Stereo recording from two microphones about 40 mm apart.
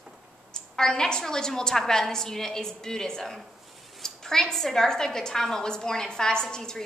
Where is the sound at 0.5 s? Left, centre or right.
Centre.